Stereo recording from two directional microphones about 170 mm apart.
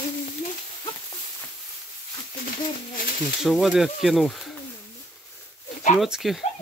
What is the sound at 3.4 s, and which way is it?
Speech, centre (ahead or behind).